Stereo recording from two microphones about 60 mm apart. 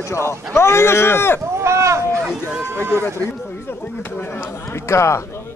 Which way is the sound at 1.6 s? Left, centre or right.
Right.